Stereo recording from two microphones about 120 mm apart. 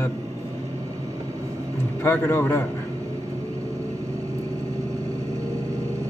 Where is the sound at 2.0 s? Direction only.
20° left (ahead or behind).